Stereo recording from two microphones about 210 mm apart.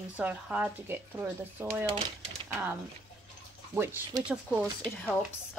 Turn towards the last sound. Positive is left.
turn(degrees=0)  # may be behind; listen again after turning